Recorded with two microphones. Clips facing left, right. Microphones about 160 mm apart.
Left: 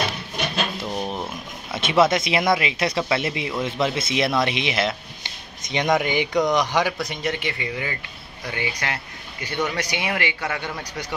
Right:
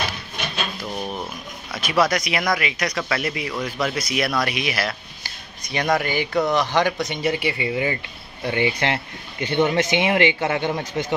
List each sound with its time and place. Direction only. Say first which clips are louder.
0.7 s drawer open or close: left 2 dB; 25° left (ahead or behind)
1.7 s speech: left 2 dB; 25° left (ahead or behind)
7.1 s speech: right 4 dB; 5° right (ahead or behind)
7.6 s speech: right 6 dB; 20° right (ahead or behind)